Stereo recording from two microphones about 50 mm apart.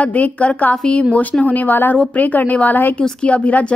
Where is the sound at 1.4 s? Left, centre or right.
Left.